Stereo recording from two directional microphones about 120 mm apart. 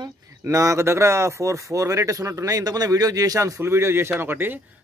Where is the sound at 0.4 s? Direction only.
25° right (ahead or behind).